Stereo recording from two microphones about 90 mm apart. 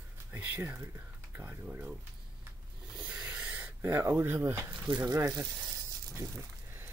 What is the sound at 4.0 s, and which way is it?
Speech, 30° right (ahead or behind).